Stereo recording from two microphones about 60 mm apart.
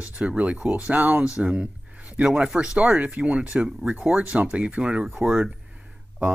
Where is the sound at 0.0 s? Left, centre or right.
Centre.